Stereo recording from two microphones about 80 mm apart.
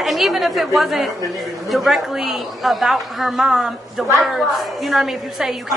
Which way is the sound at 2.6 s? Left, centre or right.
Centre.